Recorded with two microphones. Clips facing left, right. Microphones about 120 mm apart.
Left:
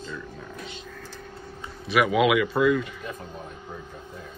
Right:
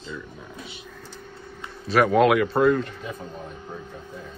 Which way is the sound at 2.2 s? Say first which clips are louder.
Right 2 dB; centre (ahead or behind).